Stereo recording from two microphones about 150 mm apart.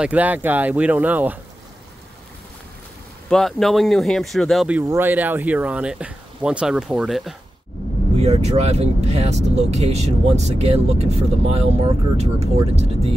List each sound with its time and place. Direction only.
0.0 s speech: 10° right (ahead or behind)
3.3 s speech: 5° left (ahead or behind)
4.8 s speech: 15° right (ahead or behind)
8.2 s speech: 45° right (ahead or behind)